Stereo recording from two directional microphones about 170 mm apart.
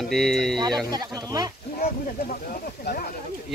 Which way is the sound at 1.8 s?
55° left (ahead or behind).